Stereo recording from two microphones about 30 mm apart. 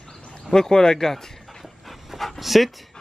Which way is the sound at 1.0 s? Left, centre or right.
Centre.